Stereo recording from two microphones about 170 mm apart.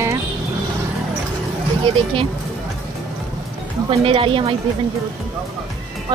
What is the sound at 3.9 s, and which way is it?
Speech, 35° right (ahead or behind).